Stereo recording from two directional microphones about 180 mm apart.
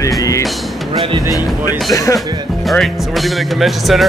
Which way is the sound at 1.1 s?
20° right (ahead or behind).